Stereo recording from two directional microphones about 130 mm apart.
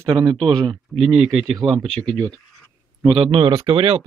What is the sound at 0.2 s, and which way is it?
Speech, 35° right (ahead or behind).